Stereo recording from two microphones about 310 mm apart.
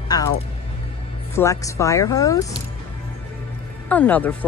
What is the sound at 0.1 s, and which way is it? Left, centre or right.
Speech, centre.